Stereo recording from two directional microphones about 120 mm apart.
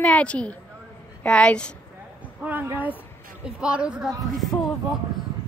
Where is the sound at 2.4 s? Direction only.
15° right (ahead or behind).